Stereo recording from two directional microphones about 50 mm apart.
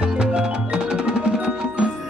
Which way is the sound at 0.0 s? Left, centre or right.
Centre.